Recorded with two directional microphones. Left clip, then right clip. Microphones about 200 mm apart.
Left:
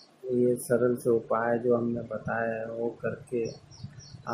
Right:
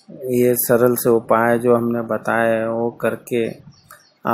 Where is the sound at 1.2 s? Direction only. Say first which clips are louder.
Right 11 dB; 30° right (ahead or behind).